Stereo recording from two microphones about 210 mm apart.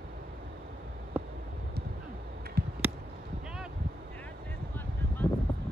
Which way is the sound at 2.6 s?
50° right (ahead or behind).